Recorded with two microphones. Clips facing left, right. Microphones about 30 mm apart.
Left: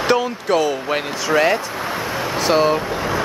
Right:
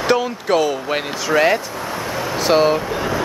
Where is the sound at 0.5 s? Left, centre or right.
Centre.